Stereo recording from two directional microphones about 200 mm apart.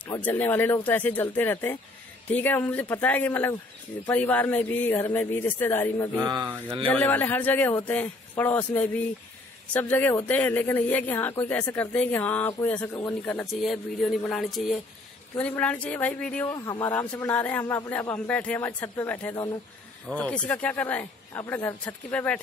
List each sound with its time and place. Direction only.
0.0 s a woman's voice: 10° left (ahead or behind)
6.1 s speech: 20° right (ahead or behind)
6.9 s a woman's voice: 10° left (ahead or behind)